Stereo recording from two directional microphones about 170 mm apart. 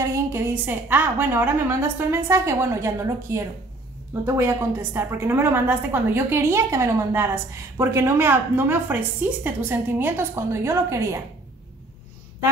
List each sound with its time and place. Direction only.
0.1 s a woman's voice: 15° right (ahead or behind)